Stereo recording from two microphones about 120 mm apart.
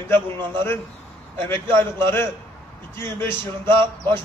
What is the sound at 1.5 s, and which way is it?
Speech, 20° left (ahead or behind).